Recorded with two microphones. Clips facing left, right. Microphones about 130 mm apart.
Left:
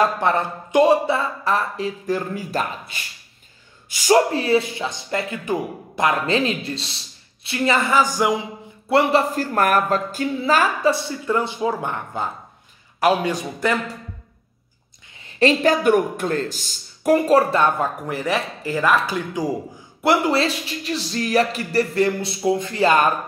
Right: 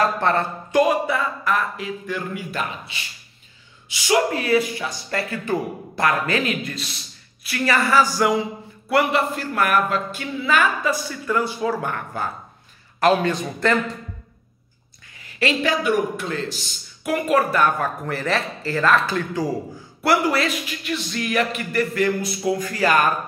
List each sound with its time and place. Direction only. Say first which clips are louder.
0.0 s a man's voice: left 1 dB; 15° left (ahead or behind)
0.8 s a man's voice: left 4 dB; 30° left (ahead or behind)
4.3 s a man's voice: left 1 dB; 30° left (ahead or behind)
9.3 s a man's voice: left 2 dB; 40° left (ahead or behind); by 13.9 s 10° left (ahead or behind)
15.1 s a man's voice: left 5 dB; 30° left (ahead or behind); by 19.4 s 10° left (ahead or behind)
20.0 s speech: left 1 dB; 25° left (ahead or behind)